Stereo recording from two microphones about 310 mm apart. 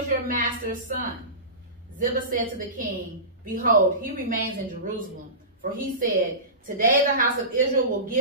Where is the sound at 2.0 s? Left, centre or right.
Right.